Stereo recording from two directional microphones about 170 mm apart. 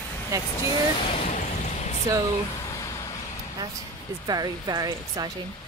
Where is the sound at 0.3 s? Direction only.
20° right (ahead or behind).